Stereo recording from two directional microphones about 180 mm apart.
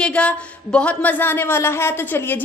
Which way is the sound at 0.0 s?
5° left (ahead or behind).